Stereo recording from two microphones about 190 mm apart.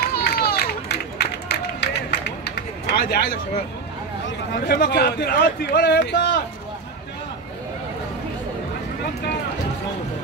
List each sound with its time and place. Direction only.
0.1 s run: 55° left (ahead or behind)
4.6 s speech: 55° left (ahead or behind)